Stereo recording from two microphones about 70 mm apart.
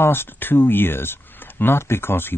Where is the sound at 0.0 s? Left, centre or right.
Left.